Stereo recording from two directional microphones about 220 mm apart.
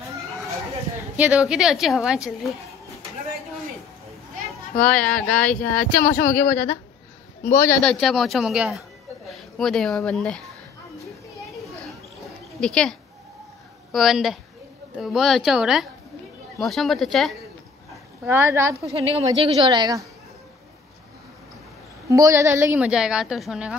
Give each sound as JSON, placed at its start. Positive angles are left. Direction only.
{"t": 1.1, "sound": "a woman's voice", "side_deg": -5}
{"t": 4.7, "sound": "a woman's voice", "side_deg": 5}
{"t": 7.9, "sound": "a woman's voice", "side_deg": 0}
{"t": 12.5, "sound": "speech", "side_deg": 5}
{"t": 13.9, "sound": "a woman's voice", "side_deg": 0}
{"t": 18.2, "sound": "a woman's voice", "side_deg": -10}
{"t": 18.9, "sound": "a woman's voice", "side_deg": -25}
{"t": 22.1, "sound": "a woman's voice", "side_deg": -15}